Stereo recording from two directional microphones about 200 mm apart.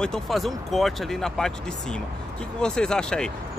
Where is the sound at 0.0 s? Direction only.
Centre (ahead or behind).